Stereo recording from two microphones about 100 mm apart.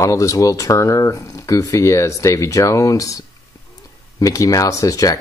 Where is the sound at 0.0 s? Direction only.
35° left (ahead or behind).